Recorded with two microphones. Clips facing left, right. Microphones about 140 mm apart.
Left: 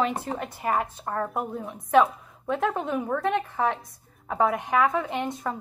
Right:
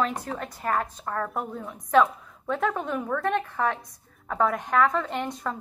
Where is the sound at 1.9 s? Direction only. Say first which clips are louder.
Left 1 dB; 5° left (ahead or behind).